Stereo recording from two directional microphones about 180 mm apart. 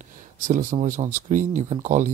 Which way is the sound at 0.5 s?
45° right (ahead or behind).